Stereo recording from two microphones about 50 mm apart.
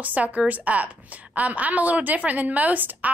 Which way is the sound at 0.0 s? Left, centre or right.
Right.